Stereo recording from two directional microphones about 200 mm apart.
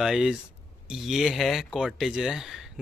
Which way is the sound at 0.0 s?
Centre (ahead or behind).